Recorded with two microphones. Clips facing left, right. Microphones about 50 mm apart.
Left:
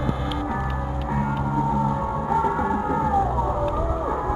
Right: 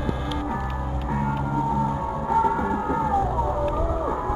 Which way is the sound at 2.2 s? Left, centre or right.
Centre.